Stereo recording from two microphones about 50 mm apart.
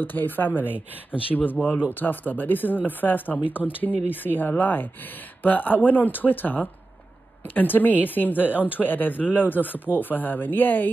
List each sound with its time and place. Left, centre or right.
0.0 s speech: left